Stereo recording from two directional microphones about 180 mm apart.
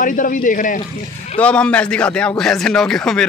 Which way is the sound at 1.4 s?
5° left (ahead or behind).